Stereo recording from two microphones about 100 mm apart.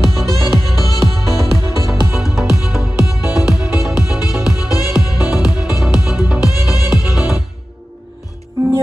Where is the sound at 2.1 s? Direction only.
5° right (ahead or behind).